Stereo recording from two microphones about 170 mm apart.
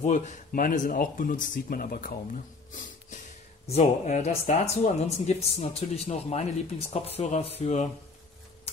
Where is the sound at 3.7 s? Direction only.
40° left (ahead or behind).